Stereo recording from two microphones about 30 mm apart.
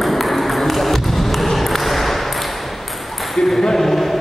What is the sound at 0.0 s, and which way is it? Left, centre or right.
Ping, centre.